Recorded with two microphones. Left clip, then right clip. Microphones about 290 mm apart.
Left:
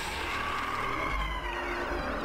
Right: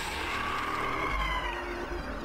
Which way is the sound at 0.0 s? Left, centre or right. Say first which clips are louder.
Even; centre.